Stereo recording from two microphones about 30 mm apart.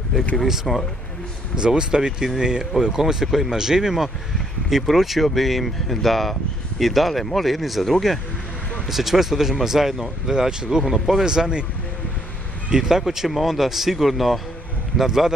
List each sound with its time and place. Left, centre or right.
0.7 s speech: centre
1.6 s speech: right; by 8.2 s centre
8.8 s speech: centre
10.2 s speech: right
11.2 s speech: right
12.7 s speech: centre
15.0 s speech: centre